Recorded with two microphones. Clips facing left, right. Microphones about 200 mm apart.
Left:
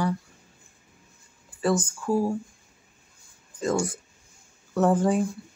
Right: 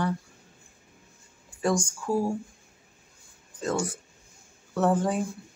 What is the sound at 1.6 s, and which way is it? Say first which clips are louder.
Speech: left 2 dB; 5° left (ahead or behind).